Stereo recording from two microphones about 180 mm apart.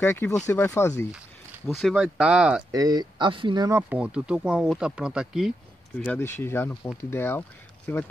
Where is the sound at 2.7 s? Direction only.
20° right (ahead or behind).